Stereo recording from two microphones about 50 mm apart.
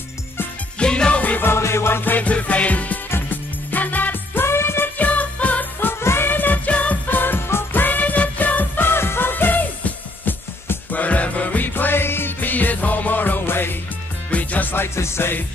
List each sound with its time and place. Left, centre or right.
0.7 s music: centre
1.6 s music: left
2.1 s music: left
3.1 s music: left
4.5 s music: left
4.9 s music: left
5.9 s music: left
7.1 s music: left
7.8 s music: left
8.8 s music: left
14.3 s music: left
15.0 s music: left